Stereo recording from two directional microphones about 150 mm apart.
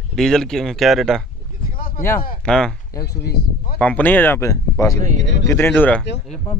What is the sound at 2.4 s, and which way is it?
Speech, 5° left (ahead or behind).